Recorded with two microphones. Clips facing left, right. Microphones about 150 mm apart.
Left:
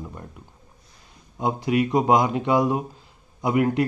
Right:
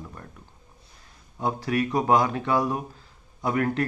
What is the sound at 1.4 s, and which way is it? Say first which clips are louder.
Speech: left 3 dB; 15° left (ahead or behind).